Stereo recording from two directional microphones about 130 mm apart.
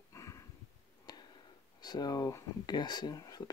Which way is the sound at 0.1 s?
25° left (ahead or behind).